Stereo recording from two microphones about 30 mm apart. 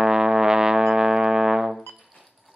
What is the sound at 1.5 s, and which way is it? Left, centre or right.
Brass instrument, centre.